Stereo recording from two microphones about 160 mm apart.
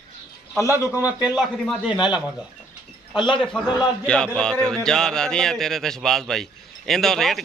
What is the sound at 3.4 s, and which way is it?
A man's voice, 5° left (ahead or behind).